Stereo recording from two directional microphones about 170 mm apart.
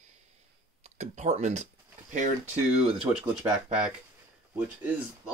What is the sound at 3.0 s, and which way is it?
Speech, 5° right (ahead or behind).